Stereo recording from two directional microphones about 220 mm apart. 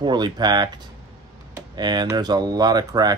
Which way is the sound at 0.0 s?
20° right (ahead or behind).